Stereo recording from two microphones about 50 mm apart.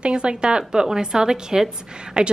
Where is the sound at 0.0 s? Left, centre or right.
Right.